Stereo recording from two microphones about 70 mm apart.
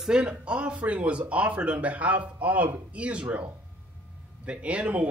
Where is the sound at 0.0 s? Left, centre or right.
Centre.